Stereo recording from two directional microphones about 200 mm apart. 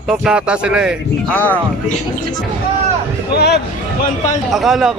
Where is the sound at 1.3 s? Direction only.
10° left (ahead or behind).